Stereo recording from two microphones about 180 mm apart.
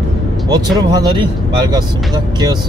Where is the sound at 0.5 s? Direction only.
20° right (ahead or behind).